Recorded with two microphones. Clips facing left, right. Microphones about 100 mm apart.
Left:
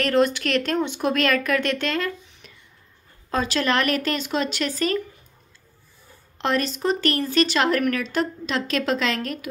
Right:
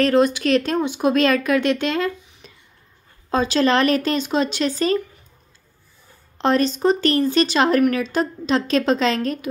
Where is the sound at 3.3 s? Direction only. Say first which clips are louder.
Right 5 dB; 25° right (ahead or behind).